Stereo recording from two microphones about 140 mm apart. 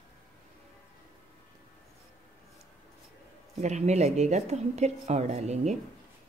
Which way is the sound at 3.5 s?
50° right (ahead or behind).